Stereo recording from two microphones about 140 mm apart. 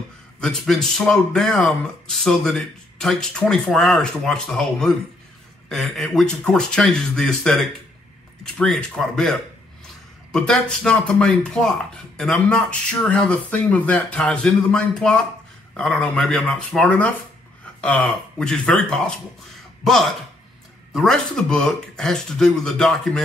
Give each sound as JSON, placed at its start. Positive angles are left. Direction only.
{"t": 0.4, "sound": "speech", "side_deg": 5}